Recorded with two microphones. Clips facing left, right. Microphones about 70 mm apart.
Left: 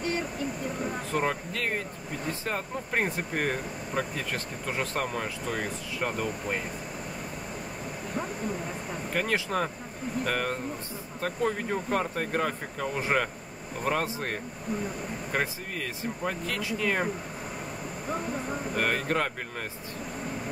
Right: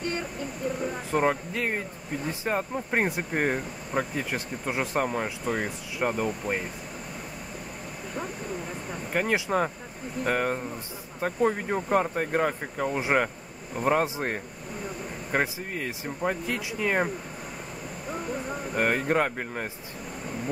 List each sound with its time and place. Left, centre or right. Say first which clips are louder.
1.1 s speech: right 5 dB; centre
9.1 s speech: right 3 dB; centre
18.8 s speech: right 4 dB; centre